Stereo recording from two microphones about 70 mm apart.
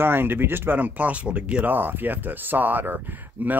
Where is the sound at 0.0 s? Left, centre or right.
Right.